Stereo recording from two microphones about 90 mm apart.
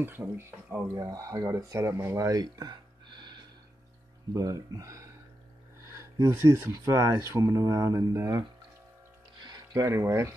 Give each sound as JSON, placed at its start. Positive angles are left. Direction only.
{"t": 0.0, "sound": "speech", "side_deg": -25}
{"t": 1.0, "sound": "speech", "side_deg": -40}
{"t": 2.4, "sound": "a sound", "side_deg": -55}
{"t": 4.3, "sound": "speech", "side_deg": -40}
{"t": 5.8, "sound": "a sound", "side_deg": -30}
{"t": 6.8, "sound": "speech", "side_deg": -35}
{"t": 9.4, "sound": "music", "side_deg": -50}
{"t": 9.8, "sound": "speech", "side_deg": -35}